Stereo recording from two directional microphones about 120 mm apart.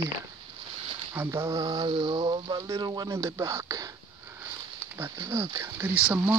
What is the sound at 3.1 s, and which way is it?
Speech, 25° right (ahead or behind).